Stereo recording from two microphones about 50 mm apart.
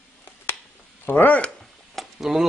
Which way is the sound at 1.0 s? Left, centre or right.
Left.